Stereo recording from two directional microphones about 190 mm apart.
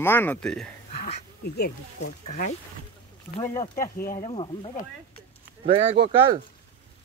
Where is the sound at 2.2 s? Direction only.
40° left (ahead or behind).